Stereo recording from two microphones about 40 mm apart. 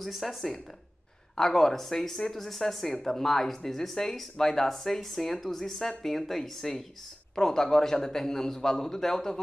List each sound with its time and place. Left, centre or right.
0.0 s speech: centre
1.3 s speech: centre